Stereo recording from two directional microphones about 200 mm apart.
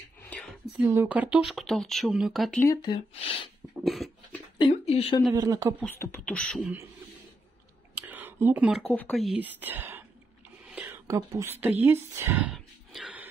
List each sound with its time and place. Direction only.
0.2 s whispering: 5° left (ahead or behind)
0.7 s speech: 10° right (ahead or behind)
2.6 s speech: 20° left (ahead or behind)
3.8 s speech: centre (ahead or behind)
4.6 s speech: 30° left (ahead or behind)
5.3 s speech: 20° right (ahead or behind)
5.9 s speech: 10° left (ahead or behind)
8.1 s speech: 10° right (ahead or behind)
10.7 s whispering: 15° right (ahead or behind)